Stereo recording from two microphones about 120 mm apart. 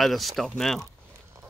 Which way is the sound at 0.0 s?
Centre (ahead or behind).